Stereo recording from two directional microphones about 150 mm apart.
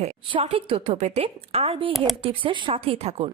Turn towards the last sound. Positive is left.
turn(degrees=-45)  # may be behind; listen again after turning